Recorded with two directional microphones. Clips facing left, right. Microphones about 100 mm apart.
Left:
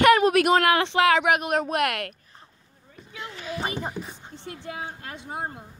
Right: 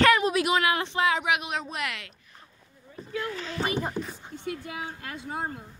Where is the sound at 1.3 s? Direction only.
50° left (ahead or behind).